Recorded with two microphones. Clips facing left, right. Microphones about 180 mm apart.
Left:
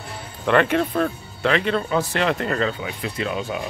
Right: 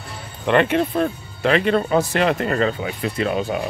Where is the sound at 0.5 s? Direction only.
25° right (ahead or behind).